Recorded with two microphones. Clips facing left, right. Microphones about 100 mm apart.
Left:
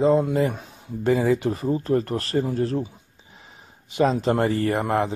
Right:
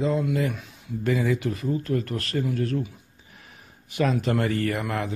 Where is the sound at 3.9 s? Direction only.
30° left (ahead or behind).